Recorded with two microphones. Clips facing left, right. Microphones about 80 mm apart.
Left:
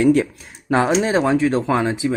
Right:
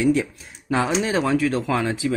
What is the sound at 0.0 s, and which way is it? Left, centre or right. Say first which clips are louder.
Speech: left 4 dB; left.